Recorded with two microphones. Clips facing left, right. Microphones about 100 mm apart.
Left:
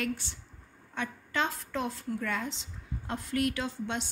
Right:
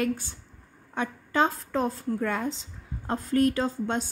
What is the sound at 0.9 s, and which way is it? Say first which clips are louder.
A woman's voice: right 6 dB; 40° right (ahead or behind).